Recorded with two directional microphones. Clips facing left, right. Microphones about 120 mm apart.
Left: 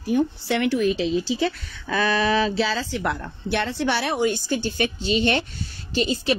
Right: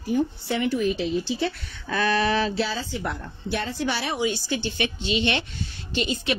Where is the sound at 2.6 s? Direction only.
90° left.